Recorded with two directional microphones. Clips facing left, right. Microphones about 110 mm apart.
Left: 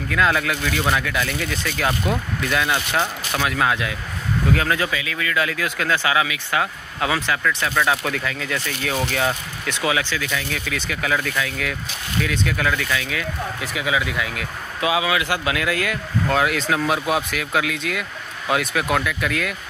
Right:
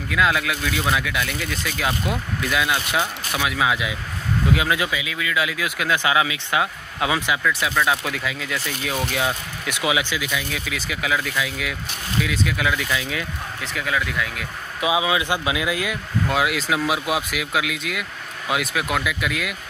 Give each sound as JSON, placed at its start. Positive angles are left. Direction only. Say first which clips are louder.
{"t": 0.1, "sound": "speech", "louder": "left 1 dB", "side_deg": -5}
{"t": 12.8, "sound": "speech", "louder": "left 1 dB", "side_deg": -20}
{"t": 13.6, "sound": "speech", "louder": "left 1 dB", "side_deg": 5}
{"t": 14.8, "sound": "speech", "louder": "even", "side_deg": -20}